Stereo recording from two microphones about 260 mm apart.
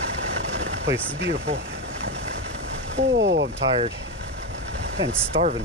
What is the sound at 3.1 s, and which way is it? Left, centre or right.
Speech, right.